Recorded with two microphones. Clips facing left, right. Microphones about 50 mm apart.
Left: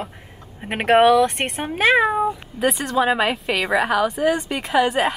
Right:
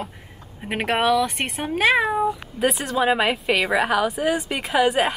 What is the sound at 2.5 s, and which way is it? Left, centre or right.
A woman's voice, centre.